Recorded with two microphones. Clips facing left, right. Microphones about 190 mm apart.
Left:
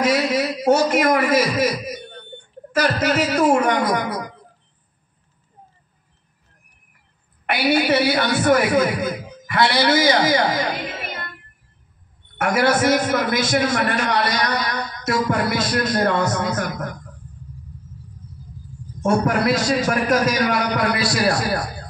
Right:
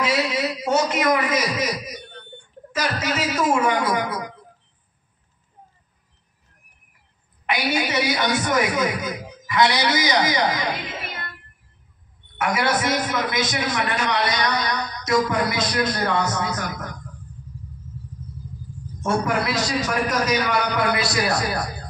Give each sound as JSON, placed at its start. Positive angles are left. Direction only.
{"t": 0.0, "sound": "a man's voice", "side_deg": 50}
{"t": 7.4, "sound": "a man's voice", "side_deg": 55}
{"t": 12.4, "sound": "a man's voice", "side_deg": 50}
{"t": 19.2, "sound": "a man's voice", "side_deg": 50}
{"t": 21.0, "sound": "a man's voice", "side_deg": -20}